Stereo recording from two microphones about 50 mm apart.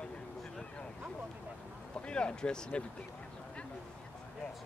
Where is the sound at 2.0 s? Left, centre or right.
Centre.